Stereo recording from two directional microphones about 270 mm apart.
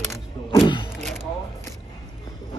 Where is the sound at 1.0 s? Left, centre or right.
Centre.